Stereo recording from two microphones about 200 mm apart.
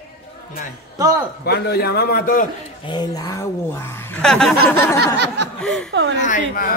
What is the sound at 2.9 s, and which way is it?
Speech, 20° left (ahead or behind).